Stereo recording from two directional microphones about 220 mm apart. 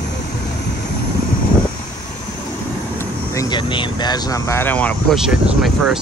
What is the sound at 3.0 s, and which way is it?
Speech, 15° left (ahead or behind).